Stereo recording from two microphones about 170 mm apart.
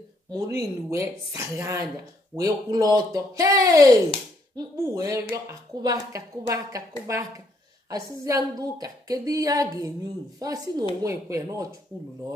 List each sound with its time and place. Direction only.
0.3 s a woman's voice: 20° right (ahead or behind)